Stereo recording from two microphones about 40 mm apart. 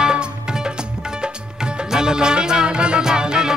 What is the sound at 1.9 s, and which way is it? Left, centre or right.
Music, centre.